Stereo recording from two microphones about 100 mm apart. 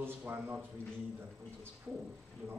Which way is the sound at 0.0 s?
20° right (ahead or behind).